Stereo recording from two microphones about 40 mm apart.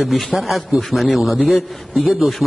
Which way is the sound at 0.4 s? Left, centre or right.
Centre.